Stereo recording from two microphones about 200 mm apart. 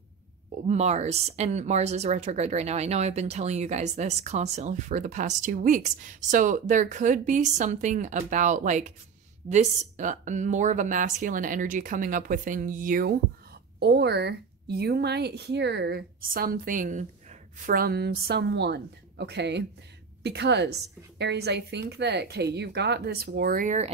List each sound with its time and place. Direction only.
0.7 s speech: 35° right (ahead or behind)
13.7 s a woman's voice: 55° right (ahead or behind); by 23.9 s 40° right (ahead or behind)